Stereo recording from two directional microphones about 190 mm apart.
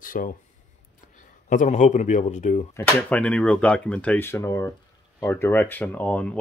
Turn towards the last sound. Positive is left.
turn(degrees=5)  # may be behind; listen again after turning